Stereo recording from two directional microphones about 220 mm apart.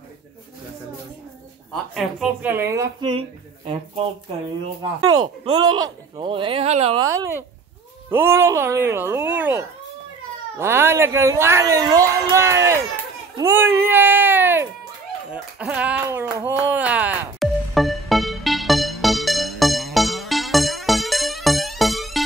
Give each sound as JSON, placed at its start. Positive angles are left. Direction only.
{"t": 1.7, "sound": "speech", "side_deg": 0}
{"t": 5.1, "sound": "speech", "side_deg": -20}
{"t": 7.1, "sound": "speech", "side_deg": -10}
{"t": 15.6, "sound": "a sound", "side_deg": -5}